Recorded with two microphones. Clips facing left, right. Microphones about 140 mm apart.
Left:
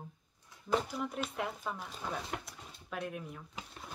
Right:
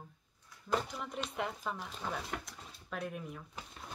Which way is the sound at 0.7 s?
Centre (ahead or behind).